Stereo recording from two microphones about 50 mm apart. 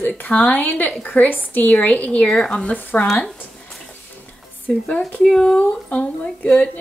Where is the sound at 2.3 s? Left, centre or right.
Centre.